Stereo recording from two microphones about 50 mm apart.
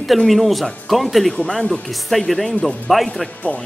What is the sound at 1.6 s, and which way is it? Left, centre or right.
Speech, centre.